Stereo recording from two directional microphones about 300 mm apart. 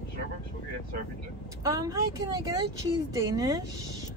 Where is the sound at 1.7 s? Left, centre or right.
Centre.